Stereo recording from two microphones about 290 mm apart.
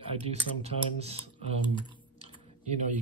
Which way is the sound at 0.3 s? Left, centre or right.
Right.